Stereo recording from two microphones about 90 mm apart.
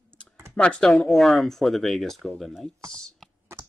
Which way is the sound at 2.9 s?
5° left (ahead or behind).